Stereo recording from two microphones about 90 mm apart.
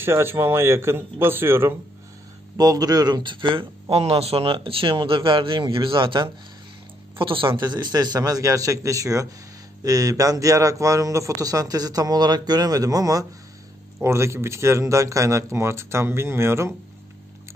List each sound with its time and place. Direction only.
0.0 s speech: 25° right (ahead or behind)
2.5 s a man's voice: 45° right (ahead or behind); by 3.6 s 70° right (ahead or behind)
3.9 s a man's voice: 90° right; by 13.3 s 40° right (ahead or behind)
14.0 s a man's voice: 30° right (ahead or behind)